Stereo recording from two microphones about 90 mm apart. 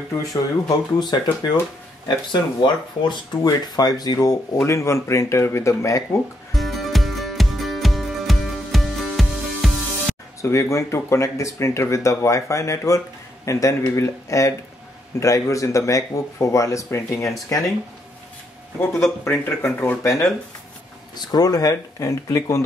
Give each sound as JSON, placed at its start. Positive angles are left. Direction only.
{"t": 0.2, "sound": "speech", "side_deg": 40}
{"t": 3.4, "sound": "speech", "side_deg": 45}
{"t": 6.5, "sound": "music", "side_deg": 0}
{"t": 10.4, "sound": "speech", "side_deg": 30}
{"t": 19.2, "sound": "speech", "side_deg": 25}
{"t": 20.0, "sound": "speech", "side_deg": 35}
{"t": 21.3, "sound": "speech", "side_deg": 45}